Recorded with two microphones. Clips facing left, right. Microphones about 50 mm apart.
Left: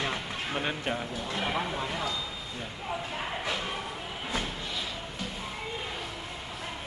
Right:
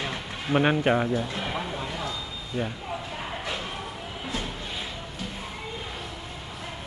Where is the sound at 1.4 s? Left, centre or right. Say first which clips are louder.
Even; centre.